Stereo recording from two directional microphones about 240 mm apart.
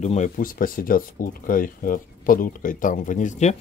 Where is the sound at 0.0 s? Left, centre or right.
Left.